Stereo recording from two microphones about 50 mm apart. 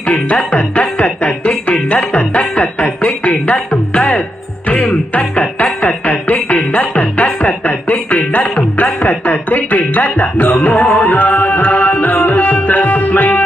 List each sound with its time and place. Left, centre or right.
0.0 s music: left
3.3 s music: left
5.3 s music: left
7.2 s music: centre
7.6 s music: left
9.0 s speech: left
10.6 s music: left